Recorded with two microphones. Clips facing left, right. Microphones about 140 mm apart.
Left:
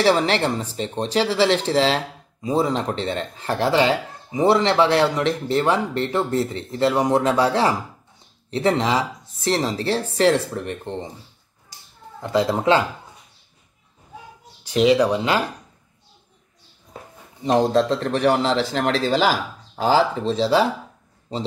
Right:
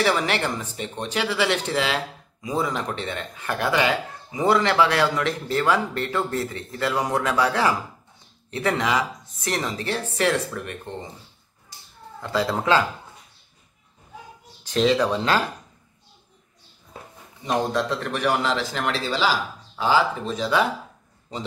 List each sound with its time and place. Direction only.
0.0 s a man's voice: 30° left (ahead or behind)
12.2 s speech: 20° left (ahead or behind)
14.6 s speech: 15° left (ahead or behind)
17.5 s a man's voice: 35° left (ahead or behind)